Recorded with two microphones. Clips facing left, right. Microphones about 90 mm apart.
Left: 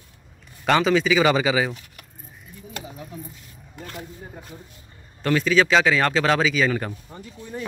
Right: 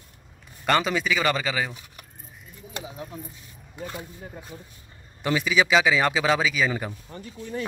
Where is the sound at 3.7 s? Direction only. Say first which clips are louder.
Right 2 dB; 15° right (ahead or behind).